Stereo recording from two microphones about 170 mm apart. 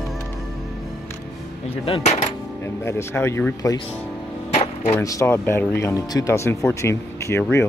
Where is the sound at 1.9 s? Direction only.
40° left (ahead or behind).